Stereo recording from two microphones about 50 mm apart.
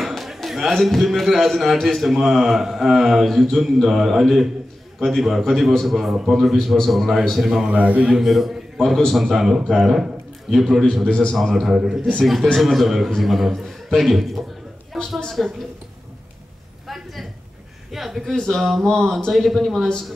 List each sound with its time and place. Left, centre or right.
0.0 s a man's voice: centre
7.7 s a man's voice: right
8.2 s a man's voice: centre
11.1 s a man's voice: centre
11.5 s a man's voice: centre
15.0 s a woman's voice: centre
16.8 s a sound: centre
17.9 s a man's voice: centre
18.2 s a man's voice: centre